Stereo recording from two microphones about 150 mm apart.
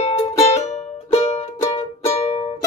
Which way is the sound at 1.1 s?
45° left (ahead or behind).